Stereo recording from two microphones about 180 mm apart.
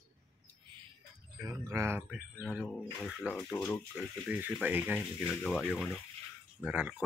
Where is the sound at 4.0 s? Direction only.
10° right (ahead or behind).